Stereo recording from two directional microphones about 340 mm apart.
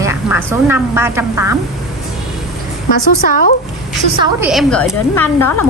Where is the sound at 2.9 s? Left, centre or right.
Left.